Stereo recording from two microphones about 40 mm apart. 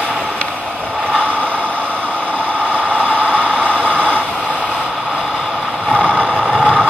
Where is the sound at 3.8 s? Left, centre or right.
Right.